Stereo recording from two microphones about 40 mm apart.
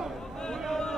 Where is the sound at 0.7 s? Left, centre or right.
Centre.